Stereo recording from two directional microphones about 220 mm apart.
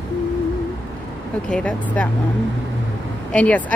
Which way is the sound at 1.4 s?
5° left (ahead or behind).